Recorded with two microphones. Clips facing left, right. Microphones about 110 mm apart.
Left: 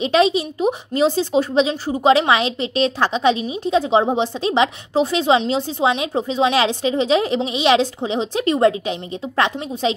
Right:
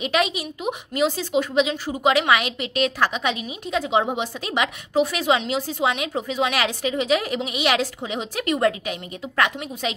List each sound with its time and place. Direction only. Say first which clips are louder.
0.0 s speech: left 7 dB; 30° left (ahead or behind)